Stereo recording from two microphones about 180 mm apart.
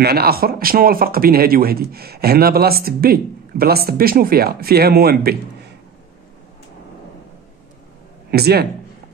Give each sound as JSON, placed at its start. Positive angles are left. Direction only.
{"t": 0.0, "sound": "speech", "side_deg": -60}
{"t": 8.3, "sound": "speech", "side_deg": -60}